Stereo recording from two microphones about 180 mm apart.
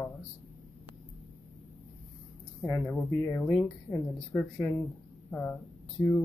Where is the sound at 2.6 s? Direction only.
5° left (ahead or behind).